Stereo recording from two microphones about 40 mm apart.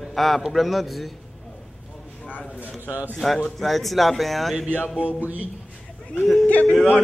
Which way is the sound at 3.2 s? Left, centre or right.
Centre.